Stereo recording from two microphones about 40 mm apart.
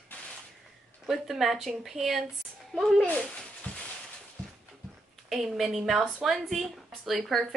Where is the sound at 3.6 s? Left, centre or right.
Left.